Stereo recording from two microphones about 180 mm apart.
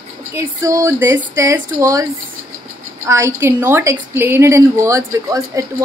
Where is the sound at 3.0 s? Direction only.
15° right (ahead or behind).